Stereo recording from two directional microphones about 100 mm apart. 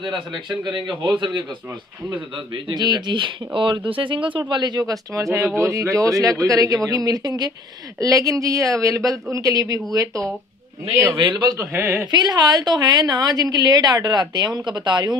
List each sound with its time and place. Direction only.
0.5 s a man's voice: 55° right (ahead or behind); by 11.1 s 30° right (ahead or behind)
11.1 s a woman's voice: 50° right (ahead or behind)
11.5 s speech: 25° right (ahead or behind)
12.1 s a woman's voice: 45° right (ahead or behind)